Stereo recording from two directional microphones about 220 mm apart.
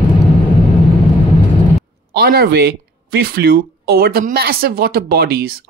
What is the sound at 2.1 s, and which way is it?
Speech, 45° right (ahead or behind).